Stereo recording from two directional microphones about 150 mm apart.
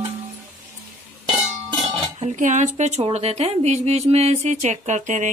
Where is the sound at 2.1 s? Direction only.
50° right (ahead or behind).